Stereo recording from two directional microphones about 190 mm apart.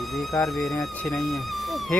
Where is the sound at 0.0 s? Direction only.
Centre (ahead or behind).